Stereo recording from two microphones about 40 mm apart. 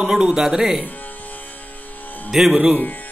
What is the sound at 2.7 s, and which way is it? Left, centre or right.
Speech, left.